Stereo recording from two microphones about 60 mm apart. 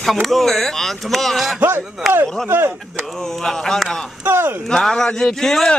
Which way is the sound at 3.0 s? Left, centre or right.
Centre.